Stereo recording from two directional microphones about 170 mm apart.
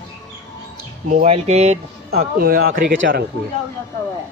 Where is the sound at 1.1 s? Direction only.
45° right (ahead or behind).